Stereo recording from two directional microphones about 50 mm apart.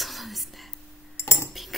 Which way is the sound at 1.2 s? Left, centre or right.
Left.